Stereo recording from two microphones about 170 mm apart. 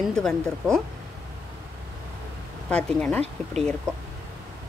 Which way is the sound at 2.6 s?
5° left (ahead or behind).